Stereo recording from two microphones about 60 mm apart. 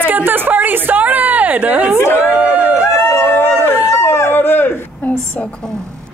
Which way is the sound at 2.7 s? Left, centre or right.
Left.